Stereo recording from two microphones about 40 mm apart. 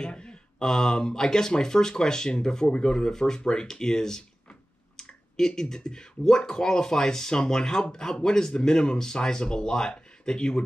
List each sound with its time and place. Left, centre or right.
0.0 s speech: left